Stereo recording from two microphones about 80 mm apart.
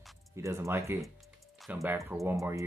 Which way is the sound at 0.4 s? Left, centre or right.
Right.